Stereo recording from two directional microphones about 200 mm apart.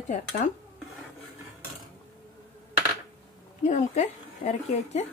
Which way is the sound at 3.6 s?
35° left (ahead or behind).